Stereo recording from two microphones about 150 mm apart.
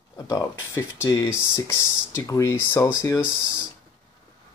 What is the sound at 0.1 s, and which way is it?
Speech, 20° left (ahead or behind).